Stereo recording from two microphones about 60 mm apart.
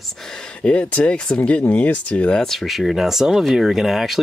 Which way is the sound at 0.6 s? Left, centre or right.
Left.